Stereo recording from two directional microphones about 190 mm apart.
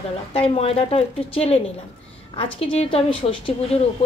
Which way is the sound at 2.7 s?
30° left (ahead or behind).